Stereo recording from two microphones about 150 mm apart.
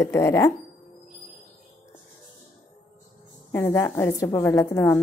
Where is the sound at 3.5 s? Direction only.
15° left (ahead or behind).